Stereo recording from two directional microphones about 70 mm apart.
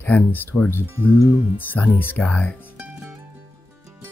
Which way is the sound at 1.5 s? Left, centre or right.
Left.